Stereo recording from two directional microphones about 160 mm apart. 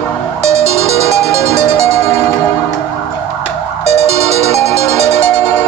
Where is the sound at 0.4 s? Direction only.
45° right (ahead or behind).